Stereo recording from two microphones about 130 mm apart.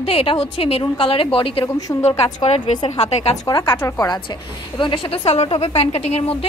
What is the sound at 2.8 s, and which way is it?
Speech, 55° left (ahead or behind).